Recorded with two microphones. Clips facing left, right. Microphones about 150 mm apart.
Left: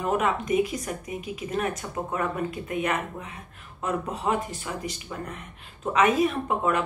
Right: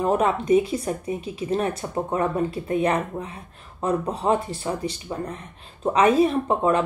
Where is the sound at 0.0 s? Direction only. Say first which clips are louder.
Right 4 dB; 30° right (ahead or behind).